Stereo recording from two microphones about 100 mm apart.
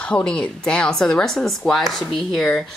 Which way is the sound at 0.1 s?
10° left (ahead or behind).